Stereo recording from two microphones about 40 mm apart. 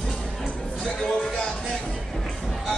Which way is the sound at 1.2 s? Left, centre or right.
Left.